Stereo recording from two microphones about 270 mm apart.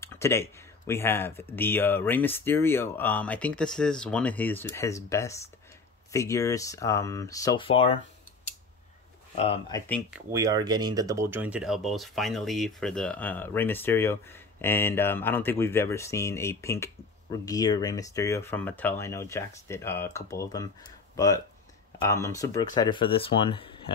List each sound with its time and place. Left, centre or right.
0.0 s speech: centre
9.3 s speech: left
10.1 s speech: centre
21.9 s speech: centre